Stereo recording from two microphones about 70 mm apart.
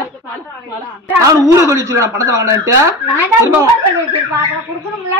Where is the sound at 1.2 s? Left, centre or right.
Right.